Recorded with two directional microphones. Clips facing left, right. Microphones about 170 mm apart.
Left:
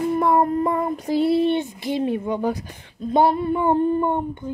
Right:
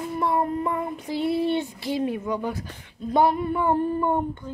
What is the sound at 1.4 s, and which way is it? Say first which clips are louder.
Speech: left 4 dB; 20° left (ahead or behind).